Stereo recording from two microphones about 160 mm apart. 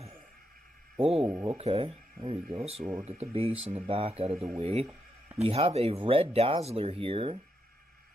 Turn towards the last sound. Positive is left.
turn(degrees=-35)  # may be behind; listen again after turning